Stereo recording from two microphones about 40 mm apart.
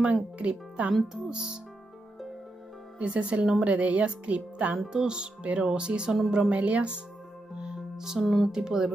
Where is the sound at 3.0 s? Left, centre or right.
Right.